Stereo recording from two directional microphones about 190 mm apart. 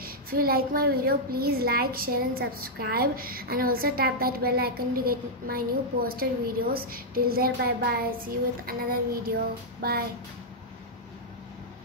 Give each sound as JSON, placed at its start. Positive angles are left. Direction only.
{"t": 0.0, "sound": "a child's voice", "side_deg": -50}
{"t": 9.8, "sound": "music", "side_deg": -55}